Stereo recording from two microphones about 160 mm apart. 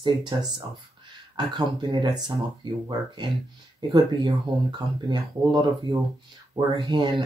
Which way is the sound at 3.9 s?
25° right (ahead or behind).